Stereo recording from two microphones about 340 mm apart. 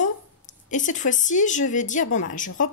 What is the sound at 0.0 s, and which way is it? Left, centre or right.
Speech, left.